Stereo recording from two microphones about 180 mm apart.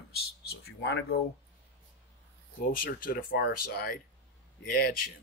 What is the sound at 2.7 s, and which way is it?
Speech, 50° left (ahead or behind).